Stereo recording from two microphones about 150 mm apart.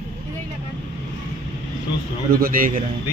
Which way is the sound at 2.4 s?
70° right (ahead or behind).